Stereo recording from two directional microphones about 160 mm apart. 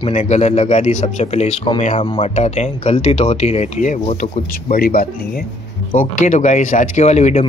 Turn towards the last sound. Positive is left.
turn(degrees=45)  # may be behind; listen again after turning